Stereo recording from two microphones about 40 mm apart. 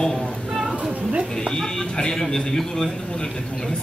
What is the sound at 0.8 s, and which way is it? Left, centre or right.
Cat, right.